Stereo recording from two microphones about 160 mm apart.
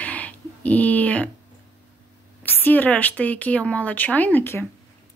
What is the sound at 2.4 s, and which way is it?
Speech, 10° left (ahead or behind).